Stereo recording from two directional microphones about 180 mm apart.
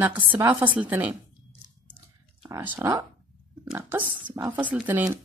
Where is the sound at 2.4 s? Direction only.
15° right (ahead or behind).